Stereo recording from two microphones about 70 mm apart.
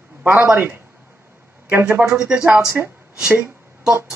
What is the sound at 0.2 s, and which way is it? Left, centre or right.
Speech, right.